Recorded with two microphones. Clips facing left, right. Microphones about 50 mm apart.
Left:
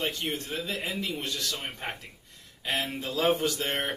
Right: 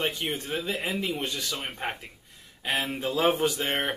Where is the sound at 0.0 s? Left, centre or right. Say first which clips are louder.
Right 2 dB; centre.